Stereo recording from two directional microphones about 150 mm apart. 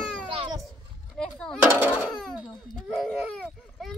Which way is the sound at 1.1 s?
5° left (ahead or behind).